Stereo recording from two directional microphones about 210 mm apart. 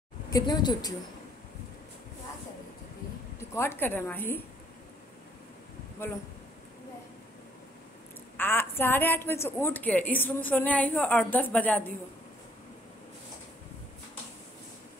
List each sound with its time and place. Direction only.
0.3 s speech: 20° left (ahead or behind)
3.3 s a woman's voice: 10° left (ahead or behind)
8.4 s a woman's voice: 10° left (ahead or behind)